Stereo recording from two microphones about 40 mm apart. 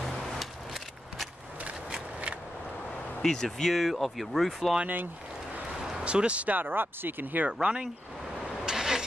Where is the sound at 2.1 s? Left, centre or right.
Right.